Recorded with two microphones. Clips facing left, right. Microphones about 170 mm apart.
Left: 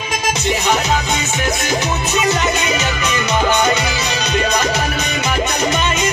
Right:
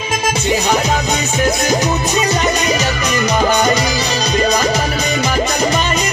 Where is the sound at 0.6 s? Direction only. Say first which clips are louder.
Right 2 dB; 40° right (ahead or behind).